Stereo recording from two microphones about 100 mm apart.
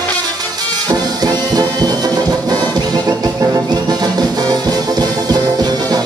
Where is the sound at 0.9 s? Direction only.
40° right (ahead or behind).